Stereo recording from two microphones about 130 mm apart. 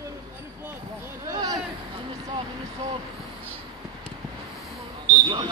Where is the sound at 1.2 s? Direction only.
30° right (ahead or behind).